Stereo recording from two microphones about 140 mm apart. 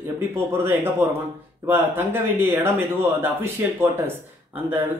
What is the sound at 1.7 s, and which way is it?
Speech, 15° right (ahead or behind).